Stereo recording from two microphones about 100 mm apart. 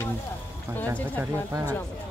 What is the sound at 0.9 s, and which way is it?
Speech, 20° right (ahead or behind).